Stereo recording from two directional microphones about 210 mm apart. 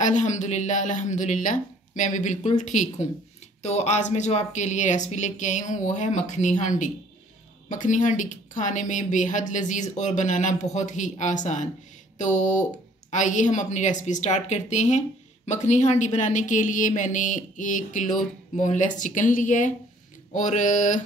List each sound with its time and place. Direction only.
0.0 s a woman's voice: 35° left (ahead or behind)
7.7 s a woman's voice: 35° left (ahead or behind)